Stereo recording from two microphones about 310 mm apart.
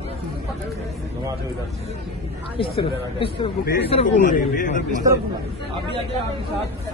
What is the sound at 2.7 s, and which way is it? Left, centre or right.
Speech, centre.